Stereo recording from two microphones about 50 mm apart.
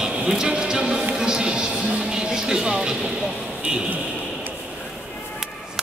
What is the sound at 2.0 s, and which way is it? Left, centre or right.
Vehicle, centre.